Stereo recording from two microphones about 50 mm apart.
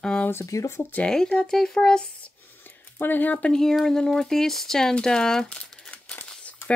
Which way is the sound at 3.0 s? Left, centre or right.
Left.